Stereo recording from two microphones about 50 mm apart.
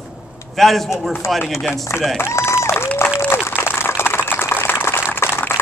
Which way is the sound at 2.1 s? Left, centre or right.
Left.